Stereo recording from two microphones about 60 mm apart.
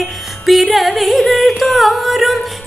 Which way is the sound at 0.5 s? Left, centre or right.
Centre.